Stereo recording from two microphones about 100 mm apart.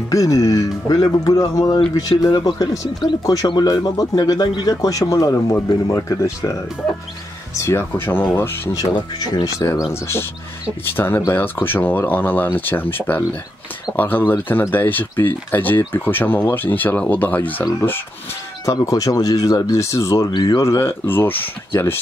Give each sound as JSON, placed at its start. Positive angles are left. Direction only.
{"t": 0.1, "sound": "speech", "side_deg": 35}
{"t": 7.5, "sound": "speech", "side_deg": 25}
{"t": 8.9, "sound": "speech", "side_deg": 45}
{"t": 9.9, "sound": "speech", "side_deg": 25}
{"t": 18.7, "sound": "speech", "side_deg": 35}
{"t": 20.2, "sound": "speech", "side_deg": 40}